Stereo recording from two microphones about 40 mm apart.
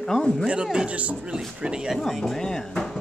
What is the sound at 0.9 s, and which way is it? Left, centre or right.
Speech, right.